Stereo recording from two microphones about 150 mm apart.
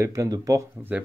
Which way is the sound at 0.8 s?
10° right (ahead or behind).